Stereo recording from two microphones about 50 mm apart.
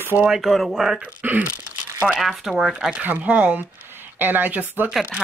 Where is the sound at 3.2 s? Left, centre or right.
Right.